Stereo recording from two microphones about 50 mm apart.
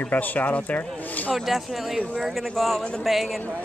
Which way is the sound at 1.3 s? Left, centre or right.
Centre.